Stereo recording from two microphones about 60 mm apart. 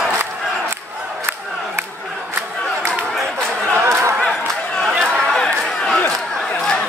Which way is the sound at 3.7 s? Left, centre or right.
Right.